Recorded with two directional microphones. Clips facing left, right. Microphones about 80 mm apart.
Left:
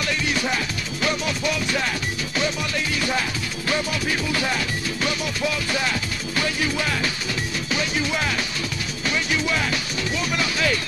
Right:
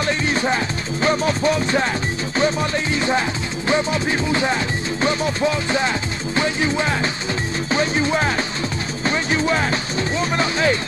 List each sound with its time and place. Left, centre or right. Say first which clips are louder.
0.0 s music: right 4 dB; right
1.0 s speech: right 6 dB; right
2.3 s music: right 6 dB; right
7.7 s speech: right 6 dB; right